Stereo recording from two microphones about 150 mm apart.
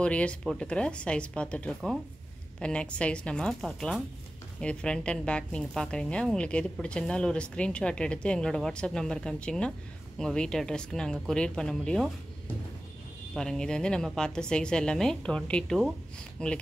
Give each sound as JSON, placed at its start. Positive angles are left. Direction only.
{"t": 0.0, "sound": "a woman's voice", "side_deg": 5}
{"t": 13.3, "sound": "a woman's voice", "side_deg": 5}